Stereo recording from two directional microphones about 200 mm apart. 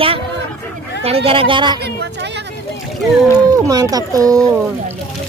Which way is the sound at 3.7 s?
20° right (ahead or behind).